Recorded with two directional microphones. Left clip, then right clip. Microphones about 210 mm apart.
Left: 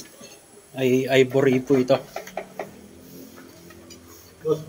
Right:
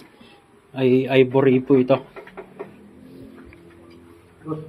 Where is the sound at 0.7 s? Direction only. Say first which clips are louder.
Right 2 dB; 25° right (ahead or behind).